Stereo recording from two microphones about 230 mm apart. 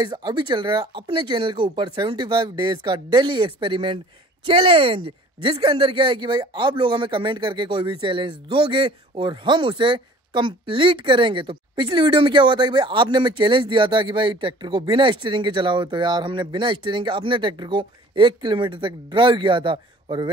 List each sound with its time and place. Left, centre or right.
0.0 s speech: centre